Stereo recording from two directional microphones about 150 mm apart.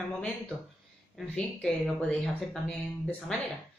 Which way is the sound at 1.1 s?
5° left (ahead or behind).